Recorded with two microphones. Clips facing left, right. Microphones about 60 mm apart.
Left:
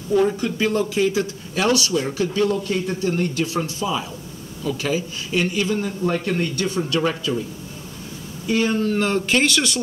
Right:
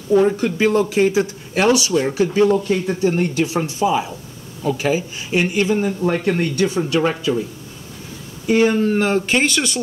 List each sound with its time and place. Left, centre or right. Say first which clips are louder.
0.1 s a man's voice: right 4 dB; right
0.4 s speech: right 4 dB; right
1.7 s a man's voice: right 3 dB; right
8.5 s a man's voice: right 5 dB; right
9.1 s speech: right 2 dB; centre